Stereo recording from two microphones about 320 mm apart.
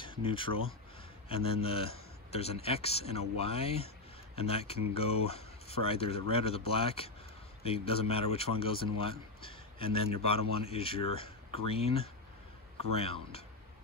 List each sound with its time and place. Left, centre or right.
0.0 s speech: centre